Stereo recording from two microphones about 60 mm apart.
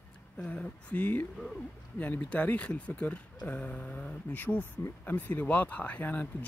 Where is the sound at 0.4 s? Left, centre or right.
Centre.